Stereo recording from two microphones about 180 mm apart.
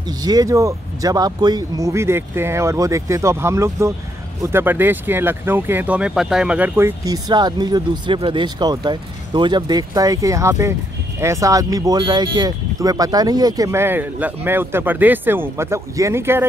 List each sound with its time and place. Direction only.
0.2 s speech: 20° right (ahead or behind)
7.1 s speech: 25° right (ahead or behind)